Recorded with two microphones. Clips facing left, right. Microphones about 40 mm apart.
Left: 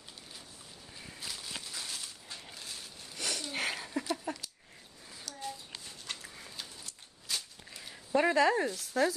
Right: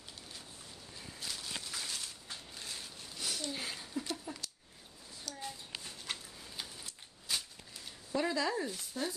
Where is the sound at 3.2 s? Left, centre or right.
Left.